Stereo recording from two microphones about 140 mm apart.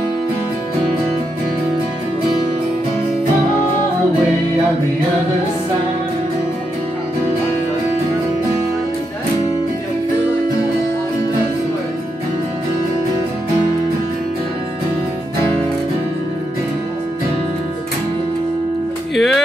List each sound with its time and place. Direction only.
19.1 s music: centre (ahead or behind)